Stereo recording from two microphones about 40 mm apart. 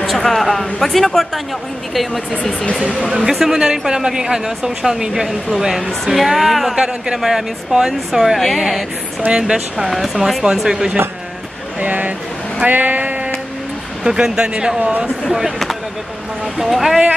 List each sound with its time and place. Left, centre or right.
0.0 s a man's voice: centre
3.1 s speech: centre
6.7 s speech: centre
9.3 s speech: centre
9.8 s a man's voice: centre
11.8 s speech: right
12.6 s sheep: right
14.0 s speech: right
14.8 s speech: right
15.2 s speech: centre
16.5 s a man's voice: centre